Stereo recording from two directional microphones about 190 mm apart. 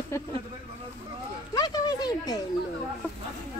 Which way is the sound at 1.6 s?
20° left (ahead or behind).